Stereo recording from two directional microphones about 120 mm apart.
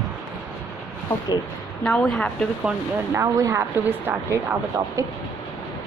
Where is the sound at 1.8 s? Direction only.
5° left (ahead or behind).